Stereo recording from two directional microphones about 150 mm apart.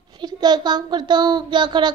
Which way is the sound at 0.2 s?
30° right (ahead or behind).